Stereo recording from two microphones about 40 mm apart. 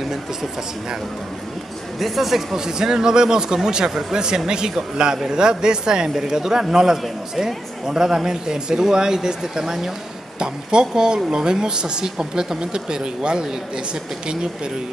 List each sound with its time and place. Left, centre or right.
0.1 s speech: centre
2.0 s speech: centre; by 14.7 s right